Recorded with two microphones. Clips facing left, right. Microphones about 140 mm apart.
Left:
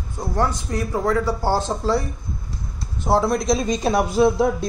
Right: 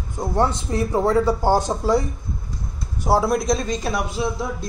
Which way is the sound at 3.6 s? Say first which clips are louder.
Left 4 dB; 15° left (ahead or behind).